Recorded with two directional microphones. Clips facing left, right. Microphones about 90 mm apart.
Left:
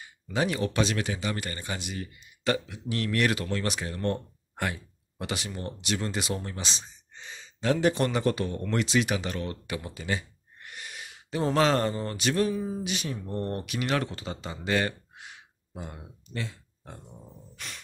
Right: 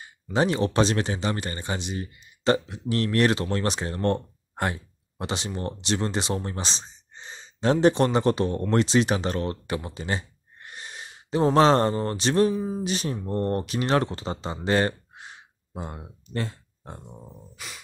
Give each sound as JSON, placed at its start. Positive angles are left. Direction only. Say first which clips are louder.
{"t": 0.0, "sound": "speech", "louder": "right 5 dB", "side_deg": -35}
{"t": 16.8, "sound": "speech", "louder": "right 4 dB", "side_deg": -30}
{"t": 17.6, "sound": "music", "louder": "right 1 dB", "side_deg": -5}